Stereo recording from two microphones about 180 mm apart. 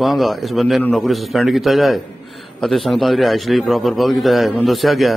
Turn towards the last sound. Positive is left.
turn(degrees=0)  # may be behind; listen again after turning